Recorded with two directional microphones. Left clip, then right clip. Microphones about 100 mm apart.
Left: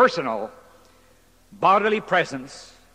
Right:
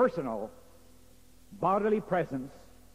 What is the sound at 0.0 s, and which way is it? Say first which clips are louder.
A man's voice: left 9 dB; 25° left (ahead or behind).